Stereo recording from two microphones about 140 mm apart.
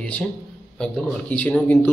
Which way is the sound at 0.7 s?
5° left (ahead or behind).